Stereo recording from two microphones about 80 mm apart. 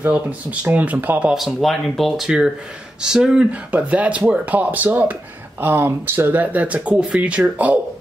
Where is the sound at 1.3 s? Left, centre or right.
Centre.